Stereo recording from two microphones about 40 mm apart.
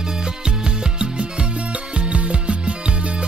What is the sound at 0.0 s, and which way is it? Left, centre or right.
Music, centre.